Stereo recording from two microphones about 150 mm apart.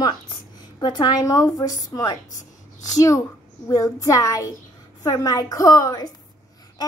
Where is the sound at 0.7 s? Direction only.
30° left (ahead or behind).